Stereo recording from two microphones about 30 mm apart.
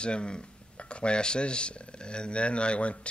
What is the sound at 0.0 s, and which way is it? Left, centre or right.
Speech, left.